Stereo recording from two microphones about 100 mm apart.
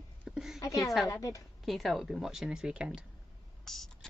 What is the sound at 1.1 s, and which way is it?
Speech, 35° left (ahead or behind).